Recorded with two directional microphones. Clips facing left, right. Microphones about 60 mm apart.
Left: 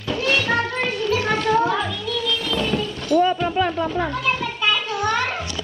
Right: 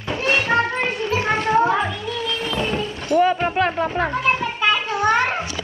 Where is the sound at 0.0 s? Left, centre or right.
Right.